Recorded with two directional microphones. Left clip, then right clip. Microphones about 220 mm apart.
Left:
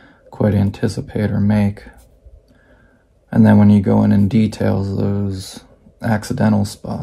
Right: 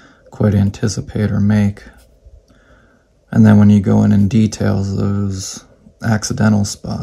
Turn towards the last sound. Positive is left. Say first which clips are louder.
# right 1 dB
turn(degrees=-35)  # may be behind; listen again after turning